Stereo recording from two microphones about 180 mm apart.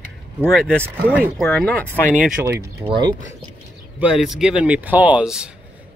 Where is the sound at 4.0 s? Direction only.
5° right (ahead or behind).